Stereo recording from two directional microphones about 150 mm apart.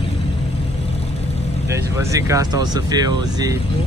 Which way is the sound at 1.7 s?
20° right (ahead or behind).